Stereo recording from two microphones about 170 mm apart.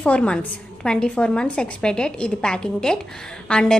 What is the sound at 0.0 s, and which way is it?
A woman's voice, 5° left (ahead or behind).